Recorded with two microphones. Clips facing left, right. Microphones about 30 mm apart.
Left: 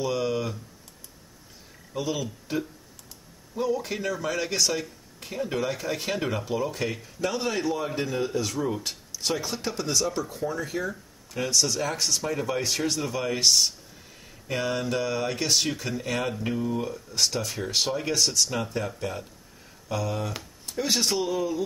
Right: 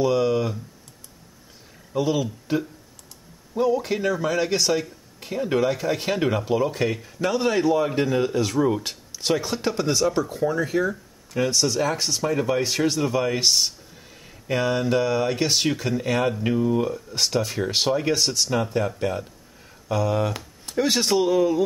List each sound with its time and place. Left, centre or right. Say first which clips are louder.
0.0 s speech: right 6 dB; centre
2.0 s speech: right 7 dB; centre
20.6 s speech: right 4 dB; centre